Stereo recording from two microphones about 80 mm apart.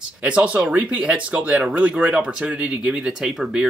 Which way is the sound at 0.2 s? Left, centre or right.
Centre.